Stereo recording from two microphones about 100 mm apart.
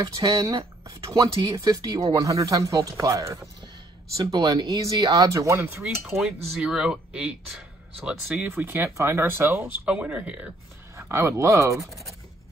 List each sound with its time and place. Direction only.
0.0 s speech: 35° right (ahead or behind)
6.1 s speech: 5° right (ahead or behind)
8.5 s speech: 25° right (ahead or behind)
9.8 s speech: 15° right (ahead or behind)
11.0 s speech: 25° right (ahead or behind)
11.8 s speech: centre (ahead or behind)